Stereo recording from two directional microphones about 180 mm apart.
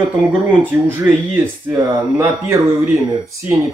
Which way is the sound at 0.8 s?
10° right (ahead or behind).